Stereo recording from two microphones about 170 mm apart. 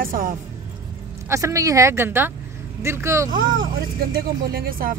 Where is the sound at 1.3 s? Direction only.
15° right (ahead or behind).